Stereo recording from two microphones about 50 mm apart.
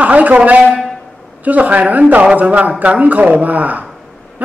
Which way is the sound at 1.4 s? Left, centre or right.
Right.